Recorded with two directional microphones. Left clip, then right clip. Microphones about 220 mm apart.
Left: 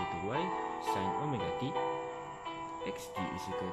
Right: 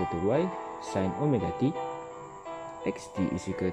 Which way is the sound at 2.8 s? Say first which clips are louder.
Right 8 dB; 30° right (ahead or behind).